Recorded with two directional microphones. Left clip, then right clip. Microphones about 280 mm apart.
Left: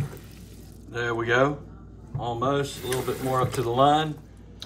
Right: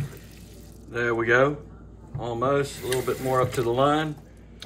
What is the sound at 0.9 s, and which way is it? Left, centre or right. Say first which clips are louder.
A man's voice: right 2 dB; centre.